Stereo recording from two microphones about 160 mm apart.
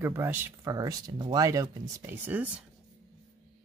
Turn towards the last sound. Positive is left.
turn(degrees=-10)  # may be behind; listen again after turning